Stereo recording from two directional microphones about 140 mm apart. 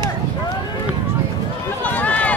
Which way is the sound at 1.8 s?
10° left (ahead or behind).